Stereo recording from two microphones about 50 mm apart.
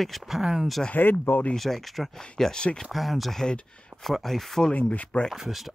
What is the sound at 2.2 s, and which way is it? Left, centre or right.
Speech, centre.